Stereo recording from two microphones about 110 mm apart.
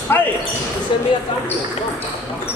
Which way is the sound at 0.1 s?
20° left (ahead or behind).